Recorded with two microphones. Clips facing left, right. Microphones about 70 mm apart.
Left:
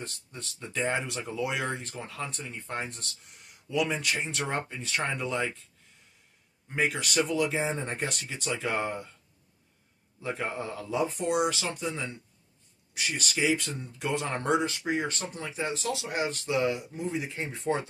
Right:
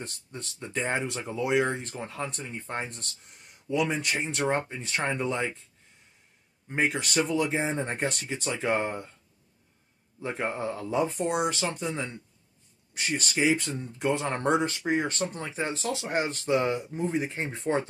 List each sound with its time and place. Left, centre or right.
0.0 s speech: right
6.7 s speech: right
10.2 s speech: right